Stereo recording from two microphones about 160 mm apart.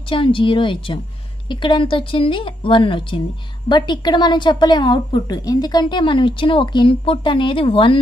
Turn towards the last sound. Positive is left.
turn(degrees=35)  # may be behind; listen again after turning